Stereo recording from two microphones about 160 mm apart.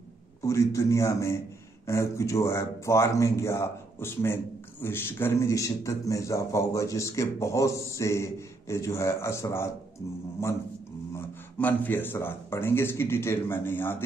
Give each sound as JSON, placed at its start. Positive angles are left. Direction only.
{"t": 0.4, "sound": "a man's voice", "side_deg": 20}